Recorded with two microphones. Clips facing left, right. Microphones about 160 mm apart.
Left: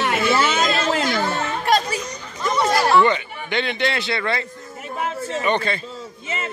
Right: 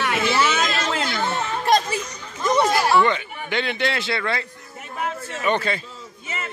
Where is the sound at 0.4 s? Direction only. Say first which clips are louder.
Left 2 dB; 30° left (ahead or behind).